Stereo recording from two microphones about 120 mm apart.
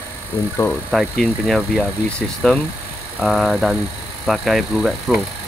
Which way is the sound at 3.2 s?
Centre (ahead or behind).